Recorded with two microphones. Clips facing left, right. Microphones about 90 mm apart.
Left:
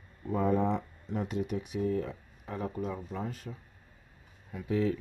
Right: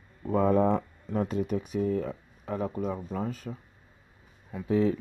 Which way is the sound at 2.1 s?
50° right (ahead or behind).